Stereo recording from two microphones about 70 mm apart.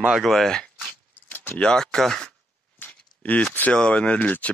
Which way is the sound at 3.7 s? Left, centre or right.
Centre.